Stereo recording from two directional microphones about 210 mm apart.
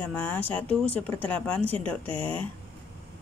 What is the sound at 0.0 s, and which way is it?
Speech, 10° left (ahead or behind).